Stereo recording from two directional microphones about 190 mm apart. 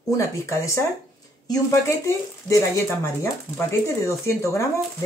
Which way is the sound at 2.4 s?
15° left (ahead or behind).